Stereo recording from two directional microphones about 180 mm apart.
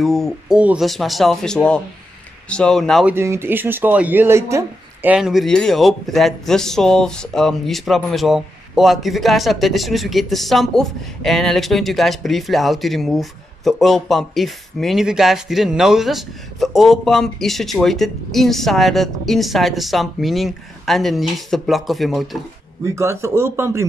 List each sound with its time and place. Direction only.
0.0 s speech: centre (ahead or behind)
3.1 s speech: 15° right (ahead or behind)
22.8 s speech: 15° right (ahead or behind)